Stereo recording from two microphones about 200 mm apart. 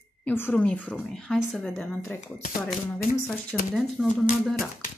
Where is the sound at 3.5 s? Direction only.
Centre (ahead or behind).